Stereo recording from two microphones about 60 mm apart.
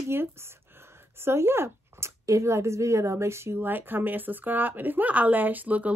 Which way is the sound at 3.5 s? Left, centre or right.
Right.